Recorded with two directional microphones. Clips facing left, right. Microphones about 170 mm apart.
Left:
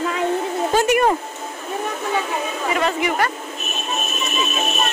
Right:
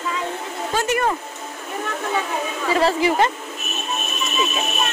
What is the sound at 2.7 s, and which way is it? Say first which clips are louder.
Speech: right 4 dB; 30° right (ahead or behind).